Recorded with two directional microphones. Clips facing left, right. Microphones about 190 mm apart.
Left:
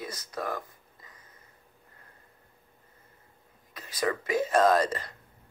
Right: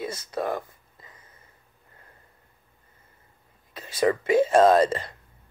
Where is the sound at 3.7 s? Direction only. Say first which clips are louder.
Right 7 dB; 25° right (ahead or behind).